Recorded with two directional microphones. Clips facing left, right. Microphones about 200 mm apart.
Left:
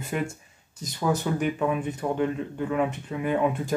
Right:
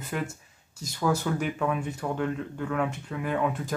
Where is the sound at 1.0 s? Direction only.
10° left (ahead or behind).